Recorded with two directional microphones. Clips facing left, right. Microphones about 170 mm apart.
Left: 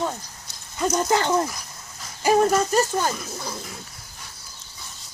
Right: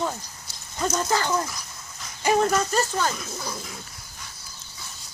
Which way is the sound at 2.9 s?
10° left (ahead or behind).